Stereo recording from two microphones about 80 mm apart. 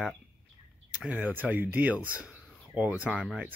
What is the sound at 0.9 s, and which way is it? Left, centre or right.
Speech, centre.